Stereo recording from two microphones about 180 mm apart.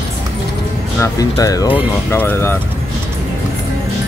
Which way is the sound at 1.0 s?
20° left (ahead or behind).